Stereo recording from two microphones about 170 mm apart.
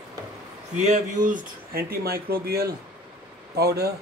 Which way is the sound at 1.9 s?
65° right (ahead or behind).